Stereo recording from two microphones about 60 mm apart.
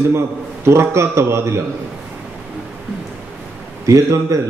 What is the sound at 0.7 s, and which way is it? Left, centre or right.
Speech, right.